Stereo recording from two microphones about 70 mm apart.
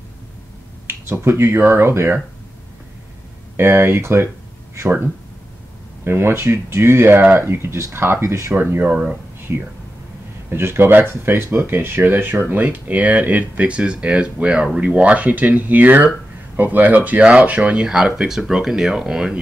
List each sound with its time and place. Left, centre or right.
0.8 s speech: right
3.5 s speech: right
6.0 s speech: right; by 19.4 s centre